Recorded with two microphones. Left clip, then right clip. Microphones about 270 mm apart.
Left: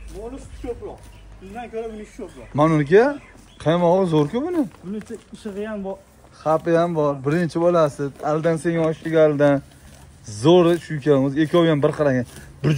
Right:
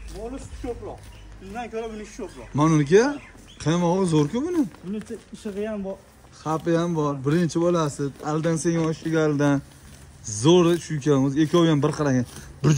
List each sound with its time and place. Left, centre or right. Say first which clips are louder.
0.6 s speech: left 2 dB; right
2.5 s speech: left 3 dB; centre
5.4 s speech: left 1 dB; centre
6.4 s speech: left 6 dB; centre